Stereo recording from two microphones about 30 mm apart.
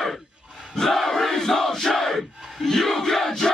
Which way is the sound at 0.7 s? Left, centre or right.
Centre.